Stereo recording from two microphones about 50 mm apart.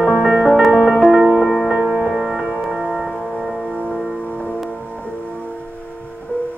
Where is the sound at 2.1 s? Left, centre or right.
Centre.